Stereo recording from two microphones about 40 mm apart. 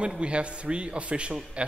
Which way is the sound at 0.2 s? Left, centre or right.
Right.